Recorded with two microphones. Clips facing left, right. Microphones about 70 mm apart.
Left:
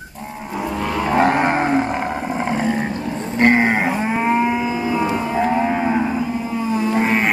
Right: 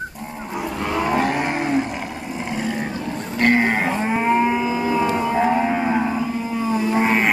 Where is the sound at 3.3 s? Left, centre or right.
Left; by 4.6 s centre.